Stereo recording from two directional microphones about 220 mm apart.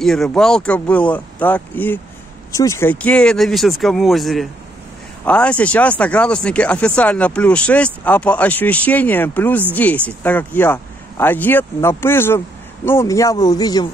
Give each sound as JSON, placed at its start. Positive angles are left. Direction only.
{"t": 0.0, "sound": "speech", "side_deg": 0}